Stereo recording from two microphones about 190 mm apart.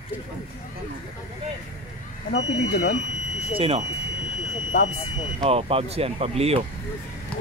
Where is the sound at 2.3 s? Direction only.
65° left (ahead or behind).